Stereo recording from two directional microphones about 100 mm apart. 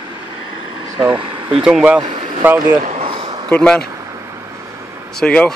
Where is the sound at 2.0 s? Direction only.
55° right (ahead or behind).